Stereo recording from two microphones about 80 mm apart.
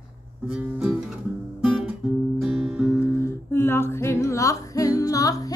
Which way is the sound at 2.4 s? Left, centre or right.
Centre.